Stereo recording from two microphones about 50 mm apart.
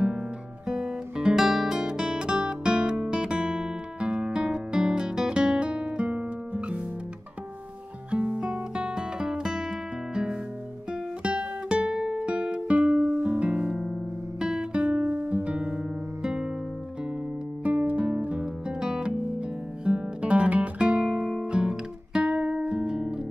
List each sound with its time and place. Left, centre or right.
0.7 s guitar: centre
8.1 s guitar: right
10.9 s music: centre
13.4 s music: centre
13.7 s music: centre
14.4 s guitar: centre
15.1 s music: right
17.6 s music: right; by 19.1 s centre
19.8 s guitar: right